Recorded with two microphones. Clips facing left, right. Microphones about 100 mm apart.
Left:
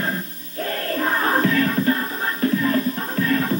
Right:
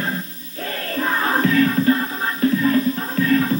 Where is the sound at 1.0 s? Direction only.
35° left (ahead or behind).